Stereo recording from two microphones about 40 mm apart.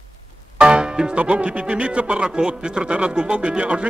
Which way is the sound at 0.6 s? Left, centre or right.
Right.